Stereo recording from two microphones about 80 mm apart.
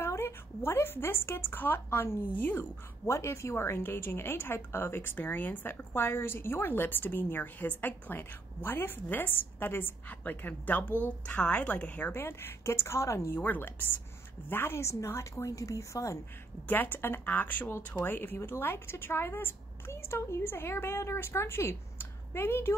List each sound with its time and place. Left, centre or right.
0.0 s a woman's voice: left
3.1 s a woman's voice: left
13.4 s a woman's voice: left
16.6 s a woman's voice: left